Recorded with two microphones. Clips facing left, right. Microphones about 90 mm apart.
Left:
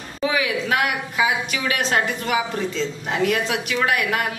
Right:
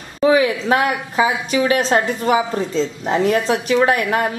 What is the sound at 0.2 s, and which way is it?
A woman's voice, 35° right (ahead or behind).